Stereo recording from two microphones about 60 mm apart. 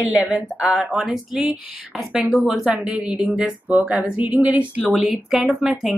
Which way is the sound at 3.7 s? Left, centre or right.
Right.